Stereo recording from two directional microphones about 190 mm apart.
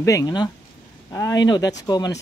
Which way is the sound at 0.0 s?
20° left (ahead or behind).